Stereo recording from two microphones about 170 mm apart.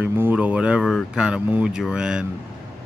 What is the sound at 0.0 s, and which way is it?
Speech, 10° right (ahead or behind).